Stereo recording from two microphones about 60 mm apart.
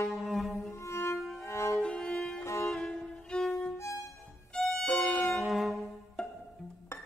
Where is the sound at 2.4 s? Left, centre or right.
Left.